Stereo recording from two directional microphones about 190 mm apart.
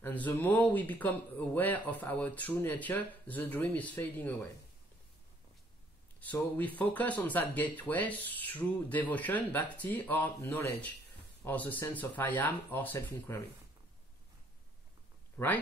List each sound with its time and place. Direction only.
0.0 s speech: 10° left (ahead or behind)
6.1 s speech: 10° left (ahead or behind)
15.3 s speech: 10° left (ahead or behind)